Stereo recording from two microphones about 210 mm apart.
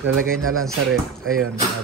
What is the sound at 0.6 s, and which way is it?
Speech, centre (ahead or behind).